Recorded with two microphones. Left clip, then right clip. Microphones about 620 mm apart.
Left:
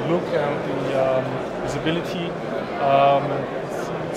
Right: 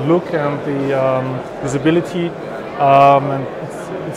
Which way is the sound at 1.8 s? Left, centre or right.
Right.